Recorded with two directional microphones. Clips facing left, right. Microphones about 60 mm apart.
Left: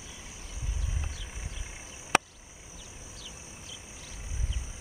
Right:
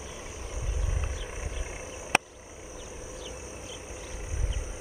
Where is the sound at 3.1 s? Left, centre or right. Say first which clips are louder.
Right 8 dB; centre.